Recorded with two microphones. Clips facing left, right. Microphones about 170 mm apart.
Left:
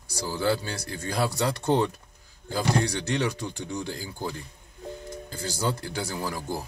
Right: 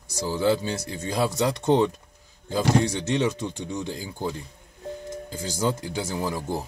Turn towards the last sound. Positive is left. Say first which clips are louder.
# right 3 dB
turn(degrees=-20)  # may be behind; listen again after turning